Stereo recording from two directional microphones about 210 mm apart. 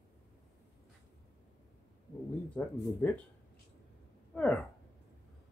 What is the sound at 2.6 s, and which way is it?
Speech, 5° left (ahead or behind).